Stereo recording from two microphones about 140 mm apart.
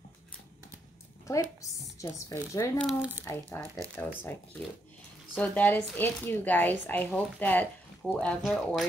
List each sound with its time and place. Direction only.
1.6 s speech: 25° left (ahead or behind)
3.0 s speech: 15° right (ahead or behind)
3.3 s speech: 20° left (ahead or behind); by 8.8 s centre (ahead or behind)